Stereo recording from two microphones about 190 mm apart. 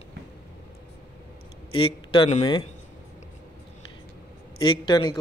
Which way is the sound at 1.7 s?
30° left (ahead or behind).